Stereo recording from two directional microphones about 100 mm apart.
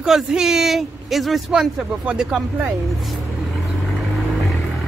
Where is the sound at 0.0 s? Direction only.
5° right (ahead or behind).